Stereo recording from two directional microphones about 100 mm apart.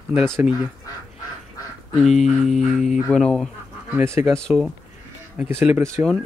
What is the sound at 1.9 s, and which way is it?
Speech, centre (ahead or behind).